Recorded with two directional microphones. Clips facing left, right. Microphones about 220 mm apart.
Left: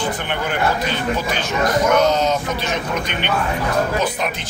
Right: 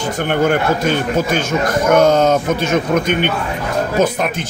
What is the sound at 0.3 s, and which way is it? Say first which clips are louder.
Speech: right 9 dB; 50° right (ahead or behind).